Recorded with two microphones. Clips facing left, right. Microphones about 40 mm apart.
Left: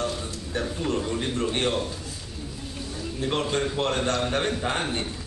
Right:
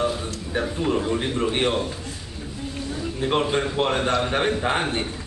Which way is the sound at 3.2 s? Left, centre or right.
Centre.